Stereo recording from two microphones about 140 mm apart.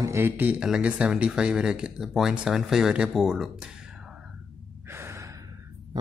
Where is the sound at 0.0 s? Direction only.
20° right (ahead or behind).